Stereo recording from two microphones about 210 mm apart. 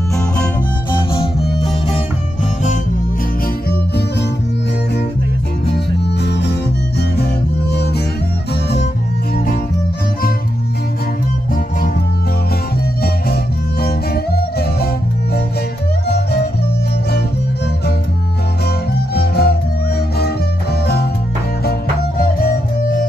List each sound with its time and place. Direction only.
6.2 s music: 55° left (ahead or behind)
7.7 s music: 50° left (ahead or behind)
13.0 s music: 45° left (ahead or behind)
16.1 s music: 50° left (ahead or behind)
19.1 s music: 50° left (ahead or behind)
22.2 s music: 45° left (ahead or behind)